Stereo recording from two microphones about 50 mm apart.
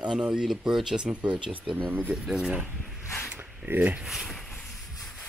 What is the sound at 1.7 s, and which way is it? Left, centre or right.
Speech, right.